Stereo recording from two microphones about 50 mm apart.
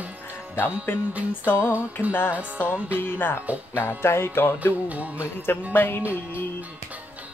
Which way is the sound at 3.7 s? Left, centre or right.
Left.